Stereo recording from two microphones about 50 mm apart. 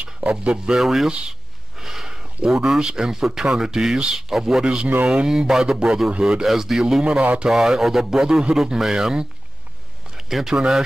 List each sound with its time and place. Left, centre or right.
0.0 s speech: right
0.7 s speech: centre
6.4 s speech: centre
10.1 s a sound: centre